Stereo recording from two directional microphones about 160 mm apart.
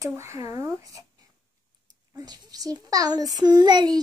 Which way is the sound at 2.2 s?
25° right (ahead or behind).